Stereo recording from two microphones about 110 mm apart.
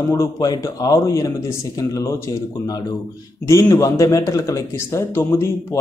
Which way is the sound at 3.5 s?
25° left (ahead or behind).